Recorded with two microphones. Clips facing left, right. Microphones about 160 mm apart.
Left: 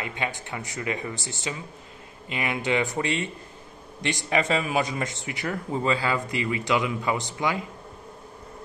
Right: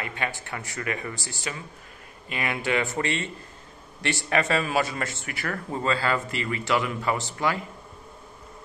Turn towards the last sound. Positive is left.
turn(degrees=15)  # may be behind; listen again after turning